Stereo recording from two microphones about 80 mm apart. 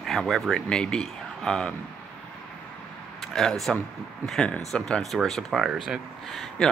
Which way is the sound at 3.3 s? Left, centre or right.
Centre.